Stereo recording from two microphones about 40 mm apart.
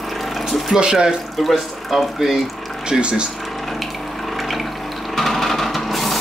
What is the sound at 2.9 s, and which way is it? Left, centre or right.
Speech, right.